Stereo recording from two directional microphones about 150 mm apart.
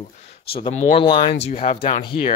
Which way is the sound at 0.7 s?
50° left (ahead or behind).